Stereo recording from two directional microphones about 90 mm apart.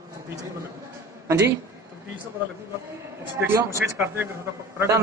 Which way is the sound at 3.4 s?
30° right (ahead or behind).